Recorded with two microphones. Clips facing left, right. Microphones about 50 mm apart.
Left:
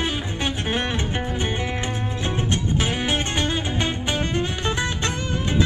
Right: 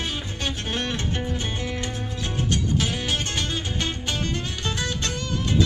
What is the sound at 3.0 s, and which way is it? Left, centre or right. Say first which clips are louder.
Music: left 4 dB; left.